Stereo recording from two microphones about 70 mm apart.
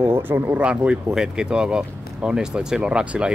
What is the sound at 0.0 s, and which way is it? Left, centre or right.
Speech, right.